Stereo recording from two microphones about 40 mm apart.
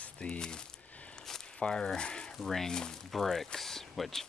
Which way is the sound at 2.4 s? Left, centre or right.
Centre.